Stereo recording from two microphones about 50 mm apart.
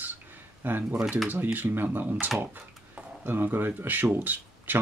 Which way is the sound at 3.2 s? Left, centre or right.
Right.